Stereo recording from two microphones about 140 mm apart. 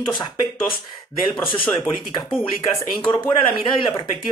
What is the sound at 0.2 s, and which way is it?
Speech, 30° left (ahead or behind).